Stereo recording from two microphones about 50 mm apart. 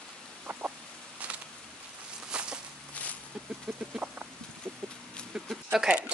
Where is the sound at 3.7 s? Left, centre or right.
Centre.